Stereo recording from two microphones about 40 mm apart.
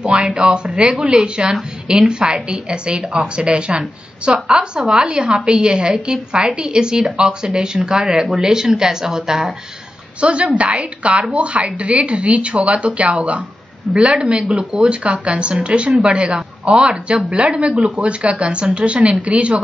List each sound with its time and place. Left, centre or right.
0.0 s speech: right
1.5 s speech: centre
2.0 s speech: right
10.2 s a woman's voice: right
13.9 s speech: centre
14.2 s a woman's voice: right